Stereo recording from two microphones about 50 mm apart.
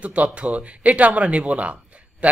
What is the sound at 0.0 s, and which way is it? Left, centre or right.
Speech, right.